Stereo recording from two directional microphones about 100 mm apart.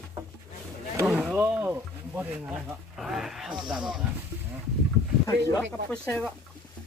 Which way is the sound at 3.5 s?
45° right (ahead or behind).